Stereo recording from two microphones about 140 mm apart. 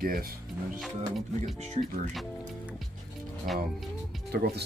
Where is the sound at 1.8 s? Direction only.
50° right (ahead or behind).